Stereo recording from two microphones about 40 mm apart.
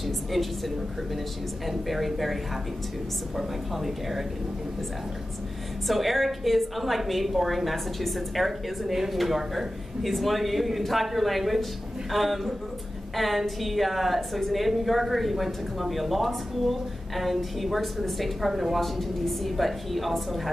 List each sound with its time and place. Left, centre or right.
0.0 s a sound: centre
1.7 s a woman's voice: centre
5.9 s a woman's voice: centre